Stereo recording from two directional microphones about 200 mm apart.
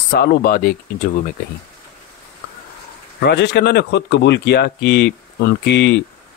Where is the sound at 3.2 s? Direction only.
55° left (ahead or behind).